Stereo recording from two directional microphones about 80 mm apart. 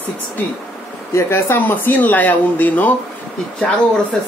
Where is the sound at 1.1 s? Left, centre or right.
Left.